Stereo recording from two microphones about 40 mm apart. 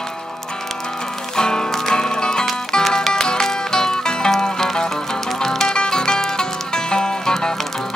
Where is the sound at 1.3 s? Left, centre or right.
Centre.